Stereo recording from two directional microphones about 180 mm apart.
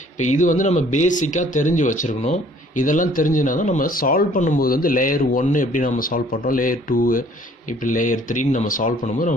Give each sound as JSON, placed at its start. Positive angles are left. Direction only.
{"t": 0.2, "sound": "speech", "side_deg": 45}